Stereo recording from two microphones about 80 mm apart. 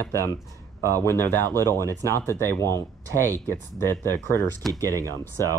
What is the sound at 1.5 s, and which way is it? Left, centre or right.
Speech, right.